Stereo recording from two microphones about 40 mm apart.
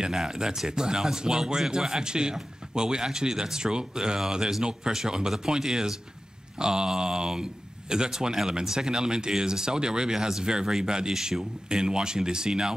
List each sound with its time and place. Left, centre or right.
0.0 s speech: centre